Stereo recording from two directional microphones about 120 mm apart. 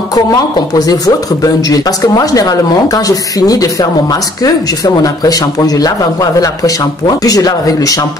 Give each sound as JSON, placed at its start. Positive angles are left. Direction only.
{"t": 0.1, "sound": "speech", "side_deg": 30}